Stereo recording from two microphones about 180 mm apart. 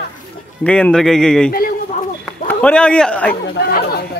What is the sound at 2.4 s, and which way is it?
Speech, 5° left (ahead or behind).